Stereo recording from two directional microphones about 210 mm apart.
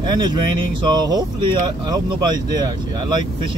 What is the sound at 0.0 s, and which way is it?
Speech, 20° right (ahead or behind).